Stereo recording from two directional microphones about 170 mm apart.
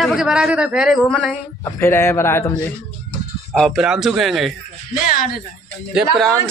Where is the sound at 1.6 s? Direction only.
15° left (ahead or behind).